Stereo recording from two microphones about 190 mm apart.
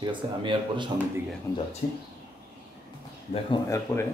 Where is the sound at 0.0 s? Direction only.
25° right (ahead or behind).